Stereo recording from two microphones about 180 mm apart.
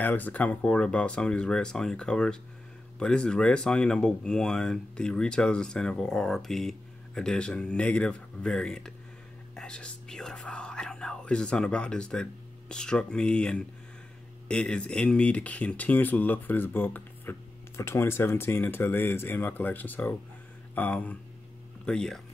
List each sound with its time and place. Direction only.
0.0 s speech: 10° left (ahead or behind)